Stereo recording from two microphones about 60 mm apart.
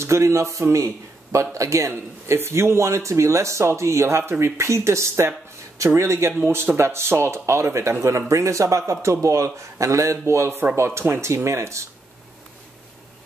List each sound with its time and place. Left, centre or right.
0.0 s a man's voice: right
4.2 s a man's voice: right